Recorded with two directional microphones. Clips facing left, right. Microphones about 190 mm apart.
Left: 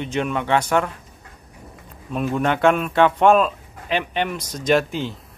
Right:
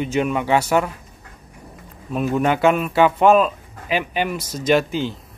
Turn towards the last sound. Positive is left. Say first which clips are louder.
# right 1 dB
turn(degrees=0)  # may be behind; listen again after turning